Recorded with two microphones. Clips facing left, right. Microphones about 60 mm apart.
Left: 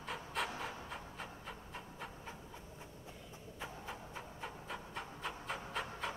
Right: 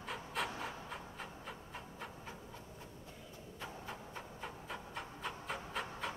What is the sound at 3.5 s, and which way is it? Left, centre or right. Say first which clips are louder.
Rub: even; centre.